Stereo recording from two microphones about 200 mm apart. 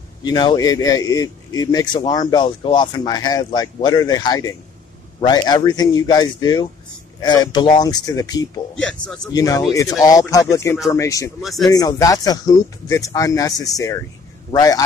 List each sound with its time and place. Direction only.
0.2 s speech: 20° left (ahead or behind)
8.7 s speech: 5° left (ahead or behind)
9.3 s speech: 20° left (ahead or behind)
11.4 s speech: centre (ahead or behind)
11.7 s speech: 20° left (ahead or behind)